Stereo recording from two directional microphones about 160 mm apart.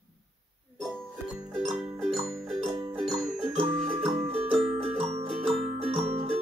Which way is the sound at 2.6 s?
30° right (ahead or behind).